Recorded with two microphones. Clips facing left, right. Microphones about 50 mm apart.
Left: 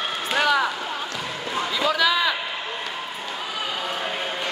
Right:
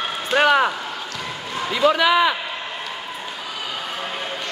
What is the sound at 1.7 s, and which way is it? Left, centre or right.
Speech, centre.